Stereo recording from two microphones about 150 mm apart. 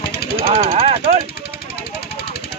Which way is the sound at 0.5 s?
45° right (ahead or behind).